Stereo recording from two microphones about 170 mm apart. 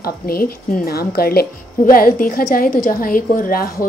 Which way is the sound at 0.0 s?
60° left (ahead or behind).